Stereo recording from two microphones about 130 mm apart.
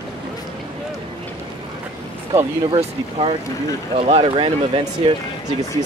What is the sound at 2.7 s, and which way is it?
Speech, 40° right (ahead or behind).